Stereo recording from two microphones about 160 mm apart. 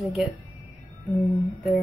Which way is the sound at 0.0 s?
Centre (ahead or behind).